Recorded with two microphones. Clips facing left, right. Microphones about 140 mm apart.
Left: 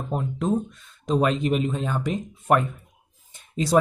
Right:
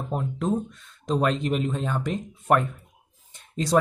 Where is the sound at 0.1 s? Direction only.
Centre (ahead or behind).